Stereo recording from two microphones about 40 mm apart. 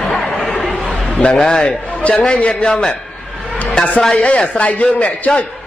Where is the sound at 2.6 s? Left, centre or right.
Centre.